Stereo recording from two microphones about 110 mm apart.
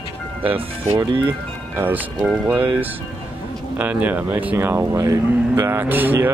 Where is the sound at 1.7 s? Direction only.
20° right (ahead or behind).